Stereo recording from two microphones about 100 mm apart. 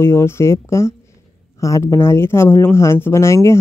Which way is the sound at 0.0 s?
25° left (ahead or behind).